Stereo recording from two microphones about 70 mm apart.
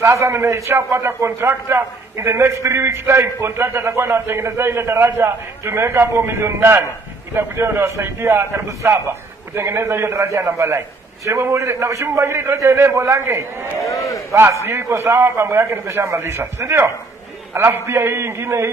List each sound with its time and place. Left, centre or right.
0.0 s a man's voice: right
13.7 s speech: left
14.3 s a man's voice: right